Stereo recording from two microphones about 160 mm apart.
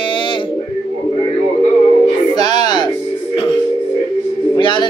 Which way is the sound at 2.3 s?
25° left (ahead or behind).